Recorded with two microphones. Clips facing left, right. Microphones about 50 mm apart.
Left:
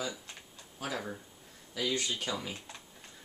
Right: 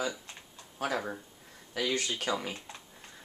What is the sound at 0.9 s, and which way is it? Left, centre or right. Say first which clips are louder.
Speech: right 2 dB; right.